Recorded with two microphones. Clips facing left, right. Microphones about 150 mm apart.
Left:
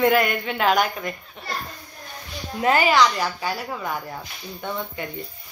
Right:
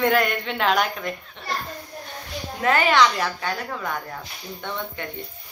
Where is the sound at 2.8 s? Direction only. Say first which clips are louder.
Right 2 dB; centre (ahead or behind).